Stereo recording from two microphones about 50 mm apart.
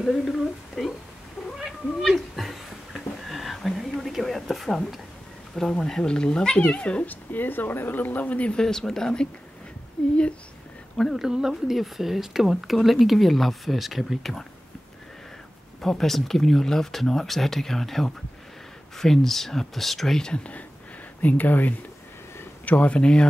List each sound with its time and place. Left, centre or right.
0.0 s speech: centre
1.6 s cat: centre
5.6 s speech: centre; by 8.5 s left
8.5 s speech: centre
11.1 s speech: centre
15.8 s speech: centre
21.2 s speech: left